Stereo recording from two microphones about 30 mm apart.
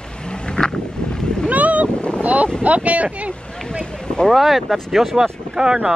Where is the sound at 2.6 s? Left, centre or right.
Right.